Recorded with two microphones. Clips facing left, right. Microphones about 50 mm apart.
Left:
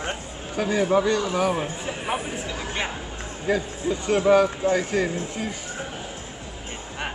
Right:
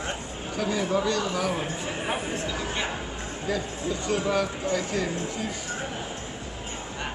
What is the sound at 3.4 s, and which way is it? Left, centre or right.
Speech, left.